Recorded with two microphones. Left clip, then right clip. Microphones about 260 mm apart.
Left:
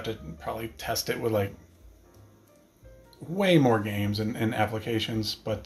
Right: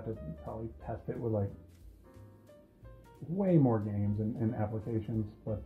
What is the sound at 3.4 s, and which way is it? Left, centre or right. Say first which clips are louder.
Speech: left 8 dB; left.